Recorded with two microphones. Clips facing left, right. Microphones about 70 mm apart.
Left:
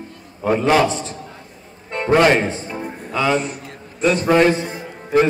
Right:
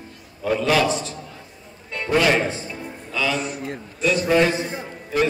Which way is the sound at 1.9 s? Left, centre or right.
Left.